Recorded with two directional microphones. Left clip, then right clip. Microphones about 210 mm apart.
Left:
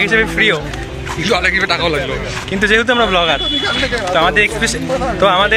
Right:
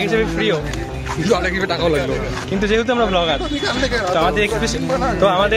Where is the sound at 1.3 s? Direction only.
25° right (ahead or behind).